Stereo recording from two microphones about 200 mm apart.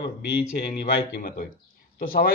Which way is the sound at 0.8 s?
45° left (ahead or behind).